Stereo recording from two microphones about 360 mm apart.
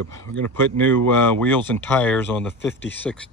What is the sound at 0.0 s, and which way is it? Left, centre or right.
Speech, right.